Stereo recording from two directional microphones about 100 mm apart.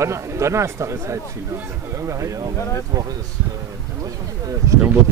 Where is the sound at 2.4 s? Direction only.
40° right (ahead or behind).